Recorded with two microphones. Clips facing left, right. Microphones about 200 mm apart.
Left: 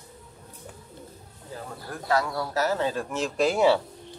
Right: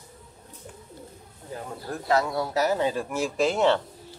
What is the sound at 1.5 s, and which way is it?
Speech, 25° right (ahead or behind).